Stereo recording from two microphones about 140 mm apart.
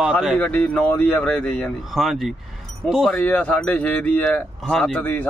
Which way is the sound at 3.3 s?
10° left (ahead or behind).